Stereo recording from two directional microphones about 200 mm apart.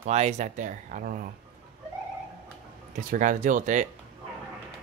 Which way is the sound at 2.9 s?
40° right (ahead or behind).